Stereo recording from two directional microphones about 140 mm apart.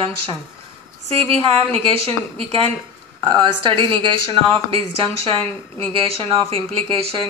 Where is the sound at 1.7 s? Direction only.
45° right (ahead or behind).